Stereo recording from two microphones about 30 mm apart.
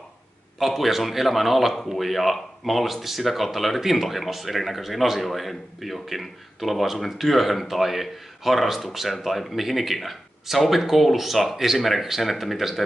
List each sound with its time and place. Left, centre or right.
0.6 s speech: centre